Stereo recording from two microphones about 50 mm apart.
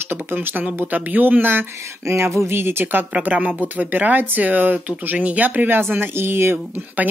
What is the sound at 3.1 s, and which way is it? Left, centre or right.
Speech, right.